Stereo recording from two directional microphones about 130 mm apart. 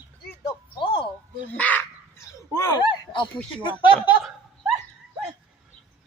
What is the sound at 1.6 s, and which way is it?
Speech, 10° left (ahead or behind).